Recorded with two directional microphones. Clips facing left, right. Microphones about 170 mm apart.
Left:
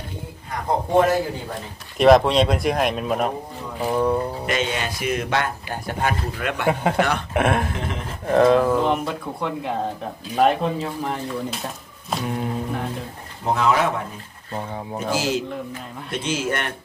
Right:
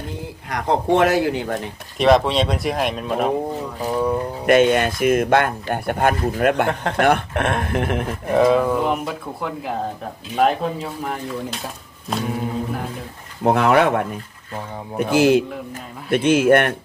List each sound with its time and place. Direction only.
0.5 s speech: 80° right
2.0 s speech: centre (ahead or behind)
4.5 s speech: 55° right (ahead or behind)
6.7 s speech: 5° left (ahead or behind)
7.0 s speech: 55° right (ahead or behind)
7.3 s speech: centre (ahead or behind)
7.7 s speech: 60° right (ahead or behind)
8.3 s speech: centre (ahead or behind)
13.4 s speech: 60° right (ahead or behind)